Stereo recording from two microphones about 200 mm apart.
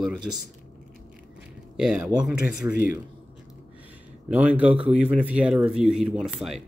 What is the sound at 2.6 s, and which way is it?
Speech, 15° right (ahead or behind).